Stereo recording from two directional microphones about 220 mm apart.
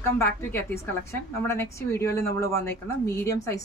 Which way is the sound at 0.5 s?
10° left (ahead or behind).